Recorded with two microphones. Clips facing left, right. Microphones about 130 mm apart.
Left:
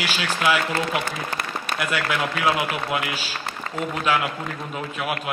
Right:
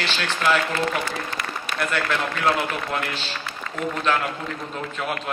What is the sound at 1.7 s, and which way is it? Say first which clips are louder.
A man's voice: even; 10° left (ahead or behind).